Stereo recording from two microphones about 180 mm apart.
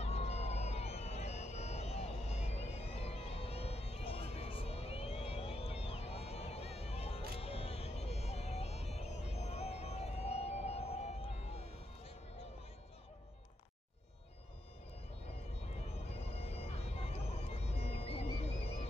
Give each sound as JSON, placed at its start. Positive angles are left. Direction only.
{"t": 0.0, "sound": "a sound", "side_deg": 35}
{"t": 16.4, "sound": "bagpipes", "side_deg": 35}
{"t": 17.6, "sound": "music", "side_deg": 35}